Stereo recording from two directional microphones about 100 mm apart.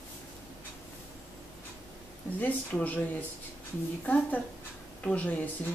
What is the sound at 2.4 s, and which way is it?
Speech, 15° left (ahead or behind).